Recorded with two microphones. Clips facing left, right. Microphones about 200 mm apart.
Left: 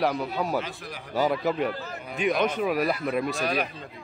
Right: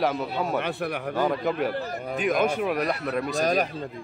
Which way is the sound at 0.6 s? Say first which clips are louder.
Right 5 dB; 65° right (ahead or behind).